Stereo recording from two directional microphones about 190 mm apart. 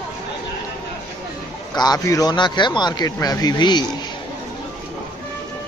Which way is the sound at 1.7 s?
20° left (ahead or behind).